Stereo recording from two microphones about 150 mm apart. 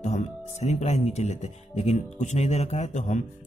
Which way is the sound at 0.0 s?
50° left (ahead or behind).